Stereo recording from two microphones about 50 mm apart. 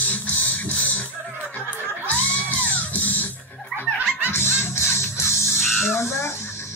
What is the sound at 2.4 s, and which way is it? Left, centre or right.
Music, left.